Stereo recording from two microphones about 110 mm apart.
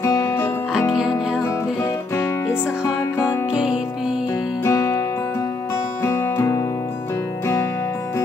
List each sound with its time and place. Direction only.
0.0 s music: 30° left (ahead or behind)
0.9 s music: 5° right (ahead or behind)
1.4 s music: 20° left (ahead or behind)
3.5 s music: 5° right (ahead or behind)
4.6 s music: 30° left (ahead or behind)
6.0 s music: 25° left (ahead or behind)